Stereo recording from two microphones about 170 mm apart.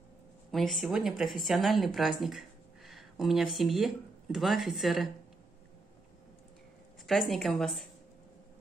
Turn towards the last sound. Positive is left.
turn(degrees=0)  # may be behind; listen again after turning